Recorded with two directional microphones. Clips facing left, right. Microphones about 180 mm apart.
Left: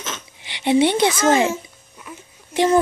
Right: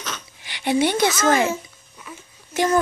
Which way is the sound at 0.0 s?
20° left (ahead or behind).